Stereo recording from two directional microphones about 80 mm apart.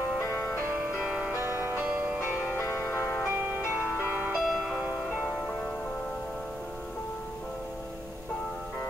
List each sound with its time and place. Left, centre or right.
0.3 s music: centre
1.0 s music: centre
1.3 s music: right
2.6 s music: left
2.9 s music: centre
3.7 s music: centre
4.3 s music: centre